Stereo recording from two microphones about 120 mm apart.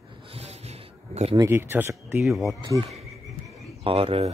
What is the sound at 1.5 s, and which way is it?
Speech, 20° right (ahead or behind).